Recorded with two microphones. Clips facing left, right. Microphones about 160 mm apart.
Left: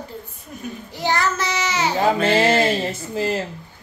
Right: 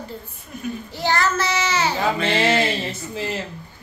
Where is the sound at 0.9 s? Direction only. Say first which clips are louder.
Even; 15° left (ahead or behind).